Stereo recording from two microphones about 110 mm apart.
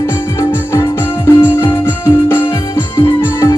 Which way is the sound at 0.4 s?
30° left (ahead or behind).